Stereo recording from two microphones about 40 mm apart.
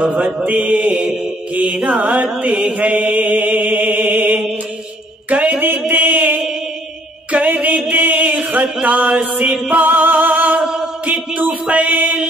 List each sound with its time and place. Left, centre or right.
0.0 s mantra: right
5.3 s a sound: right
5.9 s mantra: right
7.3 s a sound: right
8.8 s mantra: right
9.4 s mantra: right
9.8 s music: right
10.6 s a sound: centre
11.7 s mantra: right